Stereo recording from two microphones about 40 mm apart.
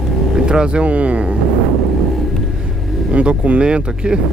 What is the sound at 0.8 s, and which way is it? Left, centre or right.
Speech, right.